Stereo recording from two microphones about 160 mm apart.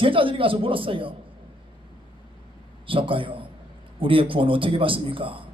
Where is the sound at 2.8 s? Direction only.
35° right (ahead or behind).